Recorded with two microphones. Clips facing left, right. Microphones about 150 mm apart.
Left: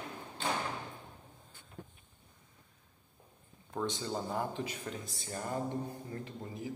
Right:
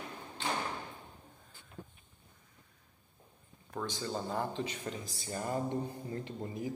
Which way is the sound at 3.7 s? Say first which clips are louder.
Left 1 dB; 20° left (ahead or behind).